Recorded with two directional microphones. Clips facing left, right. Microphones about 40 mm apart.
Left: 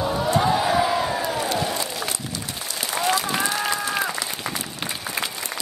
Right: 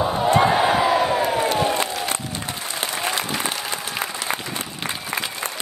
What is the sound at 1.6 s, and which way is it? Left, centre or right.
Applause, right.